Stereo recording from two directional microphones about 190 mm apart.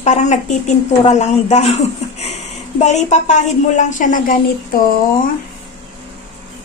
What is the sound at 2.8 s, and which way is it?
A woman's voice, 35° left (ahead or behind).